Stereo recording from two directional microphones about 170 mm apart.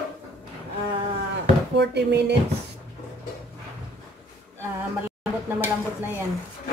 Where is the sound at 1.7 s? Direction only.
80° right.